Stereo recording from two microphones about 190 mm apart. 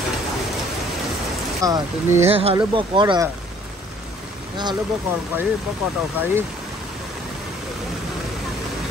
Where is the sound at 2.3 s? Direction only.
30° right (ahead or behind).